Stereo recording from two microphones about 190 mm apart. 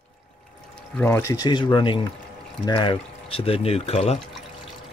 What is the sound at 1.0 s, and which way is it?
Speech, 10° left (ahead or behind).